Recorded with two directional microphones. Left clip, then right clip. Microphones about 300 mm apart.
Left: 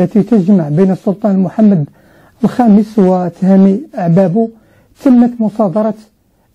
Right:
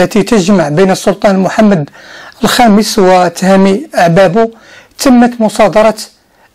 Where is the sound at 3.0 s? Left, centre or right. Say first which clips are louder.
Right 6 dB; right.